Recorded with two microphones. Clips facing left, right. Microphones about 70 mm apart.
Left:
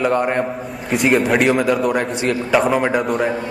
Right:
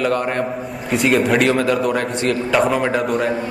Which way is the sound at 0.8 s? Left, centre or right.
Centre.